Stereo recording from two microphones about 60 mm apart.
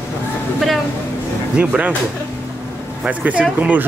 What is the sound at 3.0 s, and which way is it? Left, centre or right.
Speech, right.